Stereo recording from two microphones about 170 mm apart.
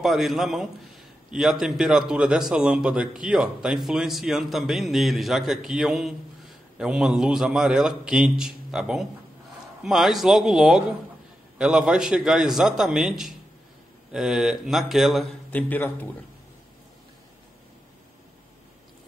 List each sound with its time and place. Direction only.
0.0 s a man's voice: centre (ahead or behind)
15.7 s a man's voice: 10° left (ahead or behind)